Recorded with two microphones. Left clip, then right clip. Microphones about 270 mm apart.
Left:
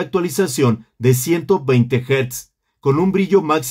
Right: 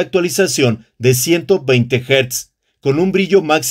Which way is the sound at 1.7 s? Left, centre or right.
Left.